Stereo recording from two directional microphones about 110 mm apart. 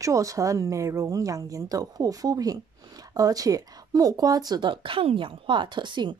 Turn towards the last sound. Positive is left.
turn(degrees=-45)  # may be behind; listen again after turning